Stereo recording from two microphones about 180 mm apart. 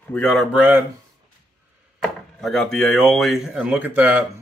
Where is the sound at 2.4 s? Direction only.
5° left (ahead or behind).